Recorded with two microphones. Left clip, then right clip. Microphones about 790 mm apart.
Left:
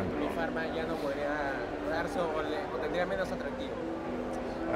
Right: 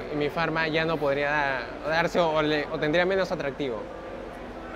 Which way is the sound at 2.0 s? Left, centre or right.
Right.